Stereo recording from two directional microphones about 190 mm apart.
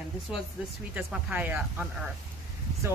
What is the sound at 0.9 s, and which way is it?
Speech, 10° right (ahead or behind).